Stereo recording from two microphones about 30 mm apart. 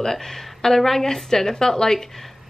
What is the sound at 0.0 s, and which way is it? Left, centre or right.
Speech, centre.